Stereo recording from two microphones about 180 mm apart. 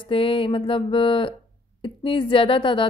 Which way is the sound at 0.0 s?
30° left (ahead or behind).